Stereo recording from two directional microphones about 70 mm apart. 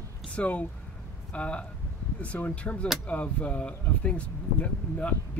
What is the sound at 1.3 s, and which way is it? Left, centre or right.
Speech, centre.